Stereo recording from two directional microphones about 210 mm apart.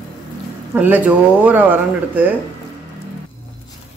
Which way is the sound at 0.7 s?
5° right (ahead or behind).